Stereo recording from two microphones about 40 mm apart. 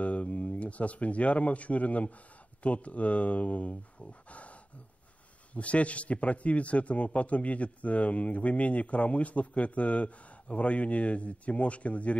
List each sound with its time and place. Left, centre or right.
0.0 s a man's voice: left